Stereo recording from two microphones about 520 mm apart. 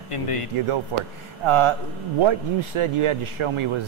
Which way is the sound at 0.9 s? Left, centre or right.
Right.